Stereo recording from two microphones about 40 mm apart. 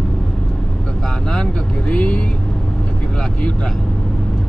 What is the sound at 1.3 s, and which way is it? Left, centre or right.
Speech, left.